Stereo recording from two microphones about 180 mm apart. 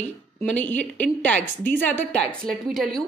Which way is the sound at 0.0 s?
10° left (ahead or behind).